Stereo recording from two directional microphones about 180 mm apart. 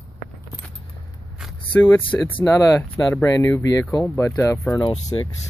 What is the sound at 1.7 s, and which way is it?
Speech, 10° left (ahead or behind).